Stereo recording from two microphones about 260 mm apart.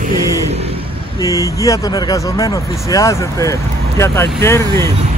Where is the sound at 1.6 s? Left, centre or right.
Centre.